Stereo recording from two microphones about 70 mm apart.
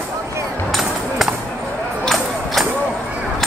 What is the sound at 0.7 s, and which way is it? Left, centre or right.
Music, centre.